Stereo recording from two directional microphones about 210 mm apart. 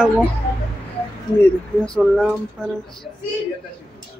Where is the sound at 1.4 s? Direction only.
5° left (ahead or behind).